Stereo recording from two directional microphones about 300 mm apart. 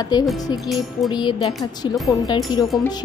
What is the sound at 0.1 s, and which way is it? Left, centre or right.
Speech, centre.